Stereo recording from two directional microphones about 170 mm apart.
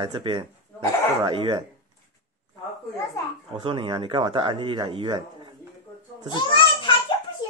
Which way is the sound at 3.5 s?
30° right (ahead or behind).